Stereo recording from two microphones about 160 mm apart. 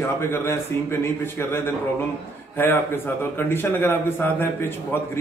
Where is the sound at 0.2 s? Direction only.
15° left (ahead or behind).